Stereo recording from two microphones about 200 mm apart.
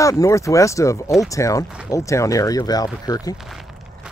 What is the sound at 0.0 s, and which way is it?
Speech, 15° left (ahead or behind).